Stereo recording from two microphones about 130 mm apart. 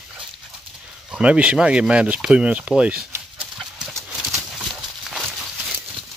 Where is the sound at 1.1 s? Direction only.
10° right (ahead or behind).